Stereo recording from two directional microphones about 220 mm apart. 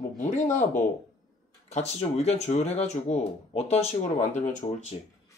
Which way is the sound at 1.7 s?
30° left (ahead or behind).